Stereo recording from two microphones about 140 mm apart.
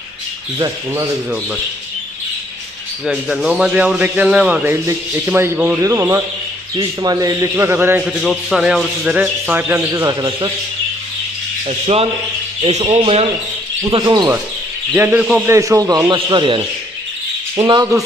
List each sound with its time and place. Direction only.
0.6 s a man's voice: 25° right (ahead or behind)
3.1 s a man's voice: 5° right (ahead or behind)
8.2 s speech: centre (ahead or behind)
9.8 s a man's voice: 30° right (ahead or behind)
11.6 s speech: 45° right (ahead or behind)
13.8 s a man's voice: 30° right (ahead or behind)
15.0 s speech: 10° right (ahead or behind)
15.4 s a man's voice: 20° right (ahead or behind)